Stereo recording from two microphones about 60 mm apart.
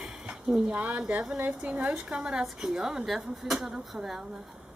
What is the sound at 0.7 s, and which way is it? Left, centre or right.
Speech, right.